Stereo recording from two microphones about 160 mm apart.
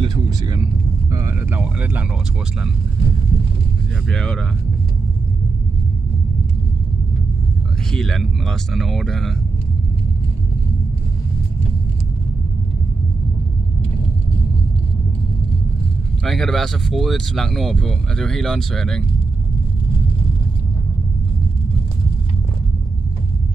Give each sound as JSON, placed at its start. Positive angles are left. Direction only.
{"t": 0.0, "sound": "speech", "side_deg": -25}
{"t": 1.6, "sound": "speech", "side_deg": -10}
{"t": 4.1, "sound": "speech", "side_deg": 5}
{"t": 7.9, "sound": "speech", "side_deg": 5}
{"t": 16.3, "sound": "speech", "side_deg": 0}